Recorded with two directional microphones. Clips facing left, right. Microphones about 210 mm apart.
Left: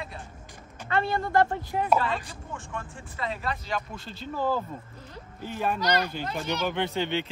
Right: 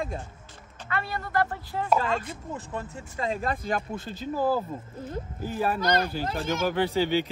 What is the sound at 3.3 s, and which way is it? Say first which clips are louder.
Speech: right 4 dB; 50° right (ahead or behind).